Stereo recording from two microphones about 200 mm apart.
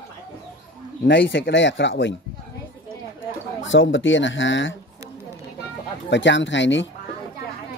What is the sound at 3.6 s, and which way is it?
Speech, 70° left (ahead or behind).